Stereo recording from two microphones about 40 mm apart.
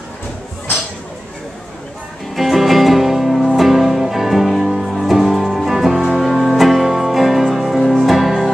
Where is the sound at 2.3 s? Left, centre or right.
Centre.